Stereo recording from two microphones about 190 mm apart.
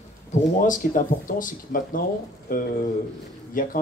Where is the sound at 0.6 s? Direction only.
45° left (ahead or behind).